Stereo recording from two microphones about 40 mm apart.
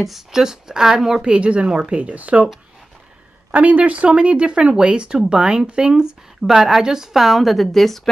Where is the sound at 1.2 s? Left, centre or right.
Right.